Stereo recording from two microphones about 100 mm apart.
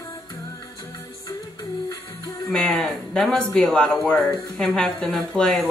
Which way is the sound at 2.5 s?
10° left (ahead or behind).